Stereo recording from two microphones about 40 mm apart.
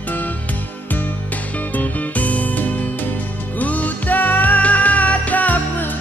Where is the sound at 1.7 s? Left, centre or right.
Left.